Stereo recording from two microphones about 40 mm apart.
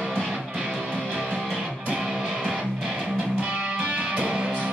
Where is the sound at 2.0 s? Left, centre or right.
Centre.